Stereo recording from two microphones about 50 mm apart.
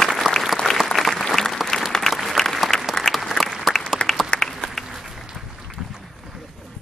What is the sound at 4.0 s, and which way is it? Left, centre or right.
Applause, left.